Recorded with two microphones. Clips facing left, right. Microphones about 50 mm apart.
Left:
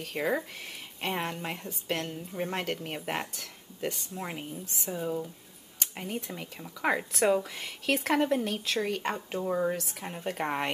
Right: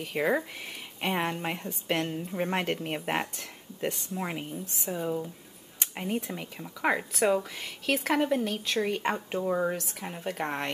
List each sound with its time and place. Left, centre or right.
0.0 s speech: centre